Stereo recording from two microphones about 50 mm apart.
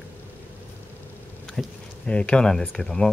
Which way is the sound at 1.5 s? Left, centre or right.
Left.